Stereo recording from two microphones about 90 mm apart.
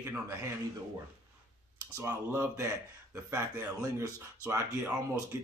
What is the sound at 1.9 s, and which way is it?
Speech, 25° right (ahead or behind).